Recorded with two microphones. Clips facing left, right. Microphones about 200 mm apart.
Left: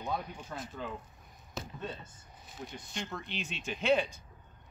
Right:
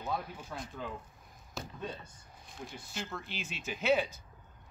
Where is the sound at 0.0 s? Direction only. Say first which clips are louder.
Even; 5° right (ahead or behind).